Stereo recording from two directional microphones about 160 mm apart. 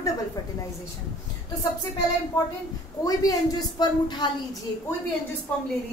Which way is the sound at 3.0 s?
20° left (ahead or behind).